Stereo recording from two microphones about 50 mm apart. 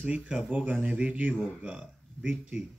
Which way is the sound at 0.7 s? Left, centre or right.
Right.